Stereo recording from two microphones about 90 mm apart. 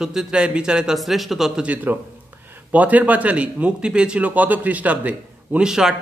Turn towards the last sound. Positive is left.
turn(degrees=-5)  # may be behind; listen again after turning